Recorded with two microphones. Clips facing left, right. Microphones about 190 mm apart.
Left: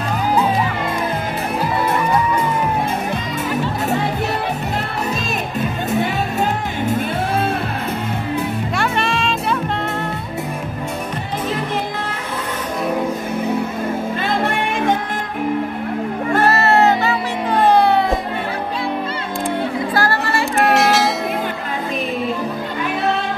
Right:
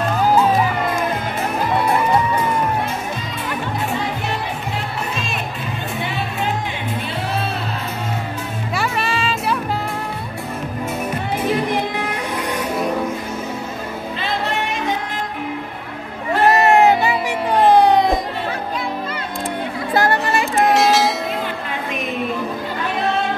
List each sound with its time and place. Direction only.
8.7 s music: centre (ahead or behind)
16.4 s music: 15° right (ahead or behind)
19.9 s chatter: 20° right (ahead or behind)
20.7 s a sound: centre (ahead or behind)